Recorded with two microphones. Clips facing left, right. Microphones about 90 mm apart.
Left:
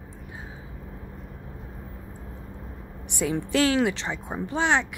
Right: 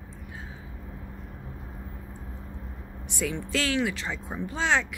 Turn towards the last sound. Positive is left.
turn(degrees=20)  # may be behind; listen again after turning